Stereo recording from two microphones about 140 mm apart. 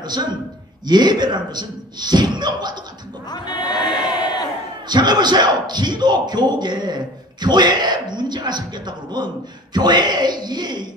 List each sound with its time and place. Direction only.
0.0 s a man's voice: 30° right (ahead or behind)
3.3 s crowd: 30° left (ahead or behind)
4.8 s a man's voice: 30° right (ahead or behind)